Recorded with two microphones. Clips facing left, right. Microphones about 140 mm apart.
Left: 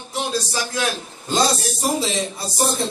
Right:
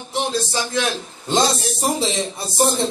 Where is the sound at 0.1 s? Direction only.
25° right (ahead or behind).